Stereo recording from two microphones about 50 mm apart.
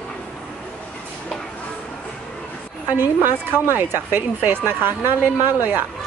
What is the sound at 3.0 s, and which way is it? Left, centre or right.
Speech, right.